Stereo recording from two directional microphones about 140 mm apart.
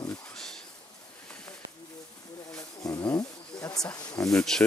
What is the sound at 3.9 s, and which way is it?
Speech, 25° left (ahead or behind).